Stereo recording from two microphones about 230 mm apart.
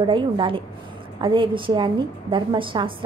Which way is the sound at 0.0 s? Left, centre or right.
Right.